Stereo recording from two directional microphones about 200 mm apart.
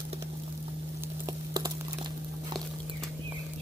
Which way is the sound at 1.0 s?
15° right (ahead or behind).